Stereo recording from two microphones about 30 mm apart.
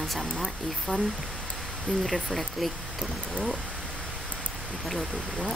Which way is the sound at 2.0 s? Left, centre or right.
Centre.